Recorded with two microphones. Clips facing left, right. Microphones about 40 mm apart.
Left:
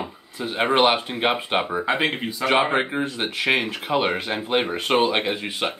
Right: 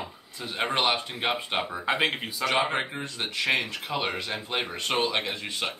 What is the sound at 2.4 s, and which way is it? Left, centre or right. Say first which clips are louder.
Speech: left 6 dB; left.